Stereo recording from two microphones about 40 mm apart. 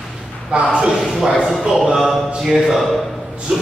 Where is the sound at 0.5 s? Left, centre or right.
Right.